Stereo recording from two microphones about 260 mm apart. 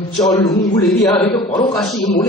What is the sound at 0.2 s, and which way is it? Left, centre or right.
Speech, centre.